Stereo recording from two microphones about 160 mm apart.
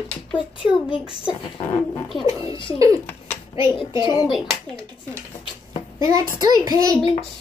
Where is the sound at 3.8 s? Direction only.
30° left (ahead or behind).